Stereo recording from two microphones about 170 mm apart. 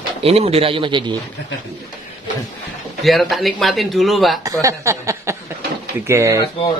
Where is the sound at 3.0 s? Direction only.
Centre (ahead or behind).